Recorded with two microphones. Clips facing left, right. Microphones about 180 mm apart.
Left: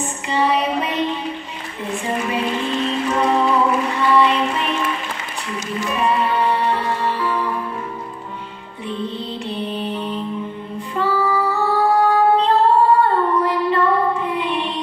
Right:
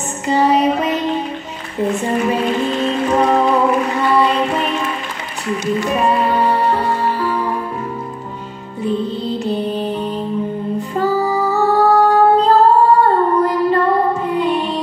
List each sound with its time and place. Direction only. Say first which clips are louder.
0.3 s music: right 5 dB; 40° right (ahead or behind)
3.2 s music: right 3 dB; 40° right (ahead or behind)
5.9 s music: right 1 dB; 40° right (ahead or behind)
8.8 s music: right 7 dB; 40° right (ahead or behind)